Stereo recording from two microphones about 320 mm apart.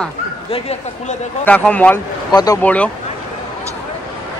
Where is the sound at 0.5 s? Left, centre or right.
Centre.